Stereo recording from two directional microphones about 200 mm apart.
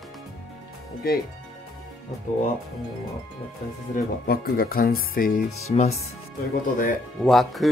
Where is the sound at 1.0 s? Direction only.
50° left (ahead or behind).